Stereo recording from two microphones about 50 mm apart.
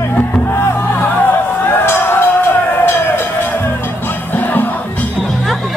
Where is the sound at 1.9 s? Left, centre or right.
Left.